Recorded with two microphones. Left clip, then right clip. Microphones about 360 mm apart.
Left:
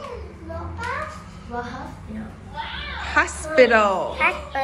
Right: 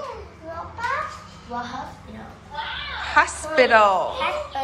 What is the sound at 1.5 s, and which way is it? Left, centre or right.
Speech, right.